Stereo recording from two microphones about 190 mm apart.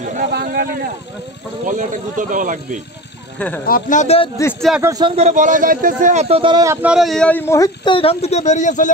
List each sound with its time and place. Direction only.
0.0 s a sound: 50° right (ahead or behind)
1.7 s speech: 45° right (ahead or behind)
3.3 s speech: 5° left (ahead or behind)
3.6 s a man's voice: 45° left (ahead or behind)
4.6 s a man's voice: centre (ahead or behind)
4.8 s a man's voice: 20° right (ahead or behind)
5.1 s a man's voice: 35° right (ahead or behind); by 8.9 s 40° left (ahead or behind)